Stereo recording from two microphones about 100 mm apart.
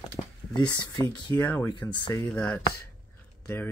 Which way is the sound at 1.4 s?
15° left (ahead or behind).